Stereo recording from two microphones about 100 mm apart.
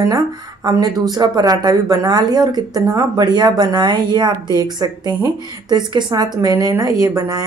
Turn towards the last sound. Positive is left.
turn(degrees=-35)  # may be behind; listen again after turning